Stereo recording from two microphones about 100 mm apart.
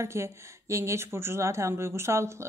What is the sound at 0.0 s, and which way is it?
A woman's voice, 30° right (ahead or behind).